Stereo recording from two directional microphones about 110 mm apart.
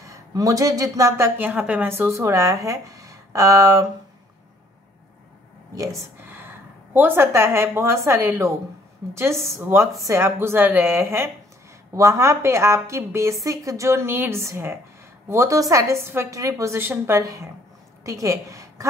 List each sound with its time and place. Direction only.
0.0 s speech: 30° right (ahead or behind)
6.1 s speech: 20° right (ahead or behind)
17.2 s a woman's voice: 30° right (ahead or behind)